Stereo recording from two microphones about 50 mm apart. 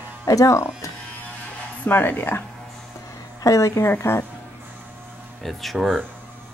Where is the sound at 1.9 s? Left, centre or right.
Left.